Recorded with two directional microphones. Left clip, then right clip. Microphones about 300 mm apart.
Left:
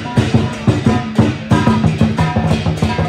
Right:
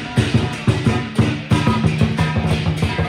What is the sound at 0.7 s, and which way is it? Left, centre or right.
Music, left.